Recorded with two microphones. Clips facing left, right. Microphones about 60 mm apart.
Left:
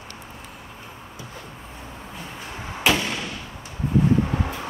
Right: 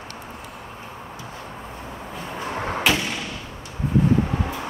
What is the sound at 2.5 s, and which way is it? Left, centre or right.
Door, right.